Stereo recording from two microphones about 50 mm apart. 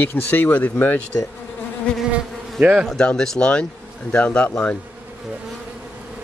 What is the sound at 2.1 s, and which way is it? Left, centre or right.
Bee, right.